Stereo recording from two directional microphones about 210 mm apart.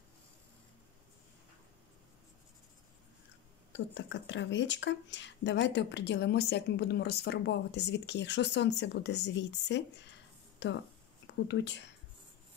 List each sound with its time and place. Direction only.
3.7 s speech: 60° left (ahead or behind)